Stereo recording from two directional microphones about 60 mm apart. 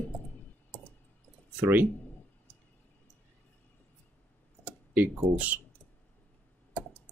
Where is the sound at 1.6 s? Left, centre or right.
Right.